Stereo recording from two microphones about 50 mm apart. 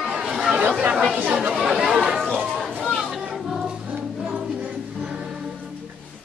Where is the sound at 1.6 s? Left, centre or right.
Centre.